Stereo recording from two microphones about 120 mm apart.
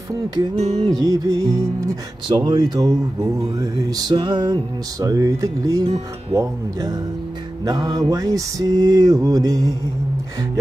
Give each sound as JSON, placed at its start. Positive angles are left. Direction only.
{"t": 0.6, "sound": "music", "side_deg": -60}
{"t": 0.8, "sound": "music", "side_deg": -30}
{"t": 2.2, "sound": "speech", "side_deg": -35}
{"t": 5.0, "sound": "music", "side_deg": -25}
{"t": 7.6, "sound": "speech", "side_deg": -35}